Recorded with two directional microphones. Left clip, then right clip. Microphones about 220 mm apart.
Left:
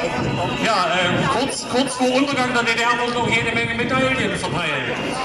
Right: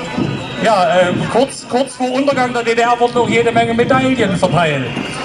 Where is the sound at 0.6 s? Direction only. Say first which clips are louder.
Right 8 dB; 40° right (ahead or behind).